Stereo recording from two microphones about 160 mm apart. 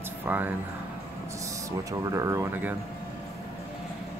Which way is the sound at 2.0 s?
20° right (ahead or behind).